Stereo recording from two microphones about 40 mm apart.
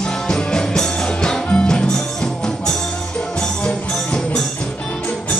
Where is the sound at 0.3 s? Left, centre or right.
Centre.